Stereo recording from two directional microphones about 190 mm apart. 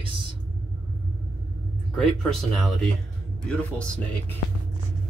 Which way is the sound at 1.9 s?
Centre (ahead or behind).